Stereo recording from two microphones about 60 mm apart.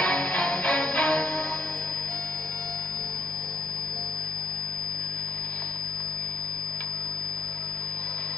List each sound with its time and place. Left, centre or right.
0.0 s music: centre